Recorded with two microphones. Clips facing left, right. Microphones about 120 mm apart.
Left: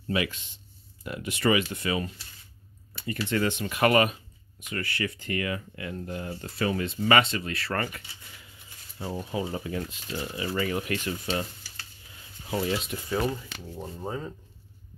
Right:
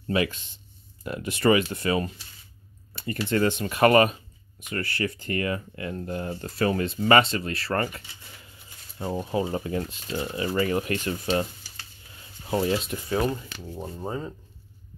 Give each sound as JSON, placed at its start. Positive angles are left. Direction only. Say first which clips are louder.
{"t": 0.1, "sound": "speech", "louder": "right 3 dB", "side_deg": -35}
{"t": 9.1, "sound": "speech", "louder": "right 5 dB", "side_deg": -35}
{"t": 12.4, "sound": "speech", "louder": "right 4 dB", "side_deg": -35}
{"t": 13.3, "sound": "speech", "louder": "right 2 dB", "side_deg": -15}